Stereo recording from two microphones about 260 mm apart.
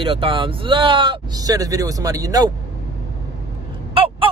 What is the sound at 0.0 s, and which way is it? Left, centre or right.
Speech, right.